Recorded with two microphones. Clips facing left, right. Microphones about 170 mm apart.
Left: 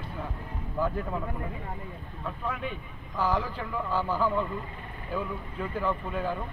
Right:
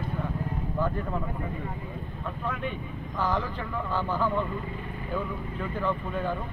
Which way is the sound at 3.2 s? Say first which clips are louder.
Left 1 dB; 10° left (ahead or behind).